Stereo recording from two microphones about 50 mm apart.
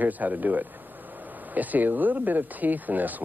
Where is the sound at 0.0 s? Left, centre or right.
Right.